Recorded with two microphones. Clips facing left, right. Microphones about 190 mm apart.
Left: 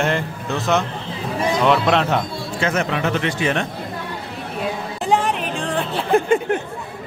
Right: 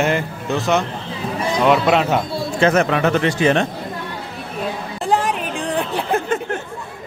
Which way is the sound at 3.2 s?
35° right (ahead or behind).